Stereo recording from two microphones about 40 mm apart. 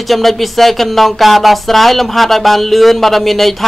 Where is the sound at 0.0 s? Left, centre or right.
Centre.